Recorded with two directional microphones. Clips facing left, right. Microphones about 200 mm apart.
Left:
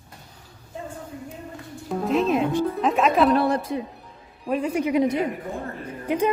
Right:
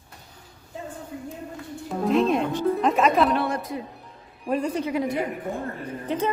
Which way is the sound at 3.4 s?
35° left (ahead or behind).